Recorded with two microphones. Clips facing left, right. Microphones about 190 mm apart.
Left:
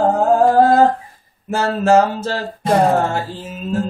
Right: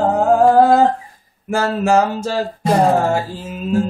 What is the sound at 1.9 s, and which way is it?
Speech, 10° right (ahead or behind).